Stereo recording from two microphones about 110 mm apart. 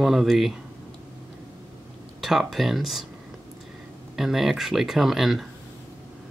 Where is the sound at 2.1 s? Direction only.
Centre (ahead or behind).